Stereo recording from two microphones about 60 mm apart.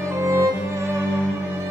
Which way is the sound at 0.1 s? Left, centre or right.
Right.